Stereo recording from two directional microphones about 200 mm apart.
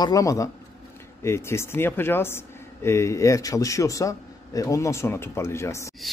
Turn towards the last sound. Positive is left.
turn(degrees=15)  # may be behind; listen again after turning